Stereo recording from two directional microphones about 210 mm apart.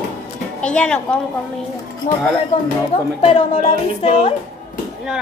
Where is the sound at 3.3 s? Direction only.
30° left (ahead or behind).